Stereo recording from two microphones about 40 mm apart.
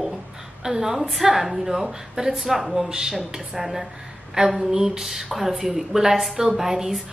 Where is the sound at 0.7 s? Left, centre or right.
Centre.